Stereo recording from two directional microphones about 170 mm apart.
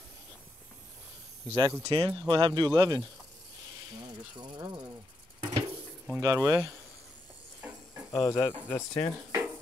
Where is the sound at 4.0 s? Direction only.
30° right (ahead or behind).